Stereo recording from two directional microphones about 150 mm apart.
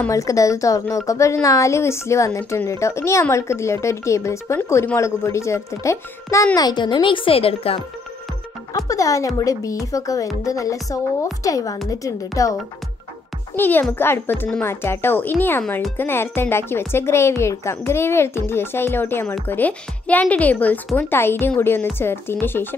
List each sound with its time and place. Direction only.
0.1 s speech: 20° left (ahead or behind); by 7.8 s 40° left (ahead or behind)
8.7 s speech: 20° left (ahead or behind)
13.6 s speech: 15° left (ahead or behind)